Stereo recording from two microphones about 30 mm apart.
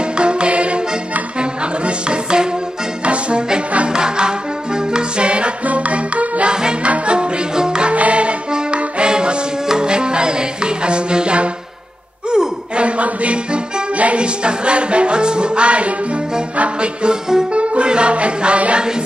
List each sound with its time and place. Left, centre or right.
0.0 s music: right
3.1 s brass instrument: right
3.9 s music: right
5.7 s music: right
6.4 s music: right
6.8 s music: right
7.9 s music: right
8.5 s music: right
12.3 s a sound: right
12.8 s music: right
14.2 s music: right
17.0 s music: right
17.5 s music: right
18.8 s a sound: right